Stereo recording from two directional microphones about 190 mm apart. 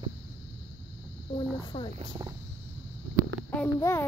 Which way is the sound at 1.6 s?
25° left (ahead or behind).